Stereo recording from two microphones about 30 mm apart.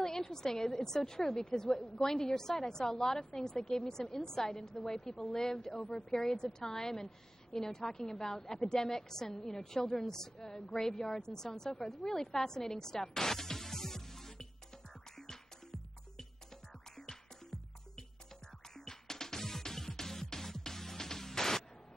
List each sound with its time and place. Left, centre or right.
0.0 s a woman's voice: centre
11.8 s music: centre
16.9 s music: centre